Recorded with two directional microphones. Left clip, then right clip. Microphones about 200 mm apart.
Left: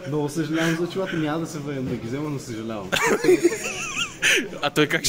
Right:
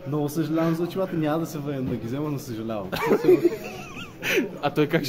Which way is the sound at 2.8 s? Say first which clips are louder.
Left 1 dB; 5° right (ahead or behind).